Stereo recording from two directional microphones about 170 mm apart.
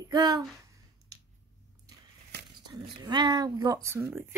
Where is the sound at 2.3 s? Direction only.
75° right (ahead or behind).